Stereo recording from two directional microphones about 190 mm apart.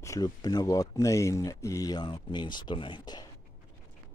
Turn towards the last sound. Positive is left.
turn(degrees=25)  # may be behind; listen again after turning